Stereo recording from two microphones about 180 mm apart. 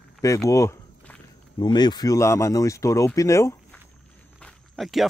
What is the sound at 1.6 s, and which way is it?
Speech, 25° left (ahead or behind).